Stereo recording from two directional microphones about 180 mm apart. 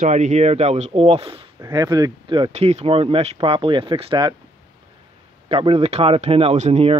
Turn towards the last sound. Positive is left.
turn(degrees=-40)  # may be behind; listen again after turning